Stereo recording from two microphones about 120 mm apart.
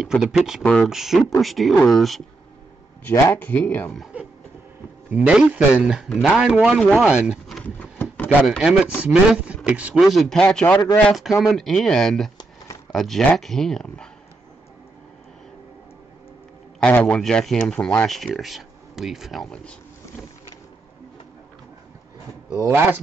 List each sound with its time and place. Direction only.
0.0 s speech: 5° right (ahead or behind)
3.0 s speech: 15° left (ahead or behind)
5.1 s speech: 10° right (ahead or behind)
6.8 s speech: 5° left (ahead or behind)
7.1 s speech: 5° right (ahead or behind)
7.6 s a sound: 15° left (ahead or behind)
8.5 s speech: 5° right (ahead or behind)
10.0 s speech: centre (ahead or behind)
16.8 s speech: 10° left (ahead or behind)
22.6 s speech: 20° right (ahead or behind)